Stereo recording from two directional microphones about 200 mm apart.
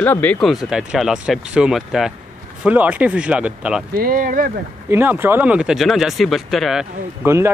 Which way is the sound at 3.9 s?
45° right (ahead or behind).